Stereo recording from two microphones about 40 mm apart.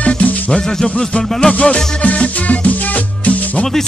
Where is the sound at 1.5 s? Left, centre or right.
Left.